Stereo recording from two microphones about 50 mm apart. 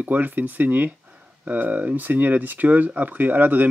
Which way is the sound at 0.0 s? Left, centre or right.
Right.